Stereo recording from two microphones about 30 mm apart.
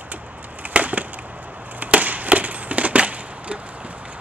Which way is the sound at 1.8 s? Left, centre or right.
Right.